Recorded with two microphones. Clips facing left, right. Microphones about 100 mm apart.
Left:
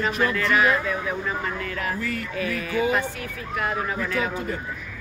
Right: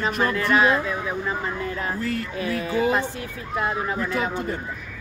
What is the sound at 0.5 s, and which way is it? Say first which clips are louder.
Speech: right 2 dB; 30° right (ahead or behind).